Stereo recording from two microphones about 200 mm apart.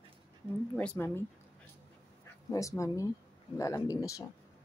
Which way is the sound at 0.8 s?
10° left (ahead or behind).